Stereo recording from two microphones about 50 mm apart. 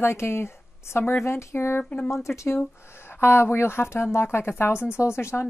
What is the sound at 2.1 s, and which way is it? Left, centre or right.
Speech, left.